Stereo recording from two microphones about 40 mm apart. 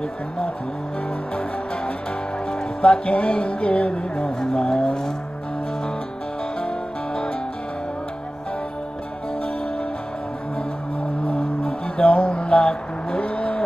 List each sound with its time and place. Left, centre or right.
2.5 s music: left
4.4 s music: centre
11.2 s music: left
13.2 s vehicle: left